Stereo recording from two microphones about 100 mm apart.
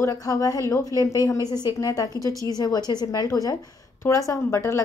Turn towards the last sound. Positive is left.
turn(degrees=30)  # may be behind; listen again after turning